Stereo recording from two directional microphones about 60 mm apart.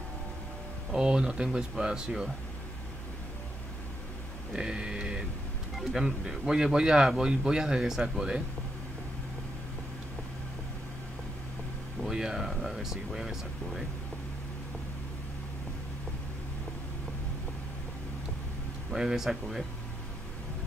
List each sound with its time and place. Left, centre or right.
0.9 s speech: centre
4.6 s a sound: centre
5.8 s speech: centre
12.0 s speech: centre
18.9 s speech: centre